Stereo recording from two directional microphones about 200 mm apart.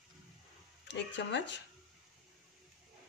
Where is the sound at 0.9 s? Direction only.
60° left (ahead or behind).